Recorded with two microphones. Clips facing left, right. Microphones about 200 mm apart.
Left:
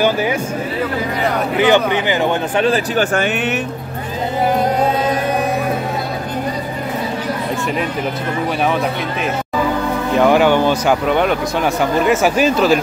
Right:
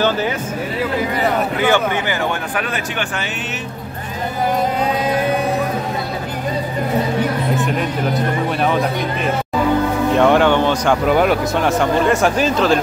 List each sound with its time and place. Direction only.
1.6 s speech: 20° left (ahead or behind)
10.1 s speech: 5° left (ahead or behind)